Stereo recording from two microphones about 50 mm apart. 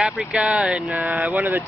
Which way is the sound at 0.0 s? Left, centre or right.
Centre.